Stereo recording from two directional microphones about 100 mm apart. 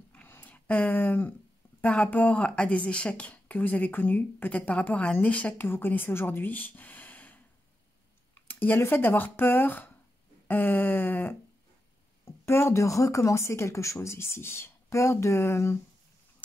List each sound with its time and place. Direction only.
0.1 s a sound: 20° left (ahead or behind)
1.8 s speech: 15° left (ahead or behind)
8.5 s speech: 20° left (ahead or behind)
12.4 s speech: 25° left (ahead or behind)